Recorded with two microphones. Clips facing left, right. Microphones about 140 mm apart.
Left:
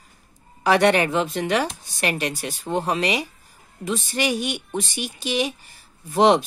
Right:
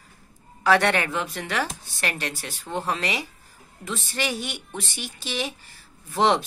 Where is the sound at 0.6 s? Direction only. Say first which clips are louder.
Left 3 dB; 15° left (ahead or behind).